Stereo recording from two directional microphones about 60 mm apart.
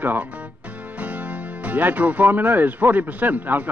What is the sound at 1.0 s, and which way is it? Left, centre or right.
Speech, right.